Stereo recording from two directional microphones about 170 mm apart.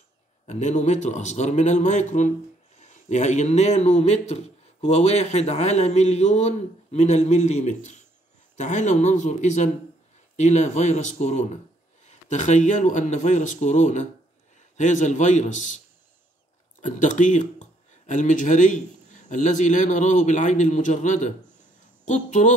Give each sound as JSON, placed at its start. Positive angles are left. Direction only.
{"t": 0.5, "sound": "a man's voice", "side_deg": 45}
{"t": 16.8, "sound": "speech", "side_deg": 45}